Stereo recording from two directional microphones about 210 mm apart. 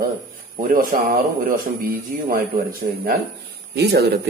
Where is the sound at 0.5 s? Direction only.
40° right (ahead or behind).